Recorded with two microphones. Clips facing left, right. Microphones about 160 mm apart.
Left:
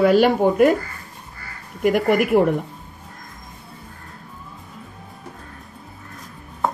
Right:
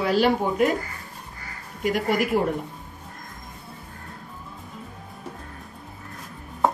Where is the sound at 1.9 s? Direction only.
55° left (ahead or behind).